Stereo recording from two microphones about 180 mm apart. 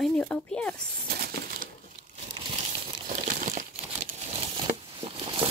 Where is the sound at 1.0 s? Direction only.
60° right (ahead or behind).